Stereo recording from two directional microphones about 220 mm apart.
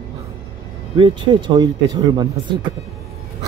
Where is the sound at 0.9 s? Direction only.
20° right (ahead or behind).